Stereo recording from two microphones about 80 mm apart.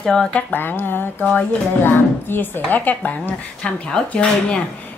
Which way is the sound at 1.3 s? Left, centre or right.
Centre.